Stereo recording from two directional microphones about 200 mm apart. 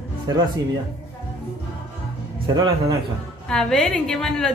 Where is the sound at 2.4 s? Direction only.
20° right (ahead or behind).